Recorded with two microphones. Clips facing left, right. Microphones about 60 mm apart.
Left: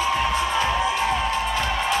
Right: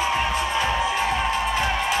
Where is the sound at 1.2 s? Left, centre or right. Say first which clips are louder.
Right 1 dB; centre.